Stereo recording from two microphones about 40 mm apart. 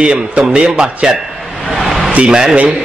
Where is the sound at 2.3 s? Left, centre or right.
Centre.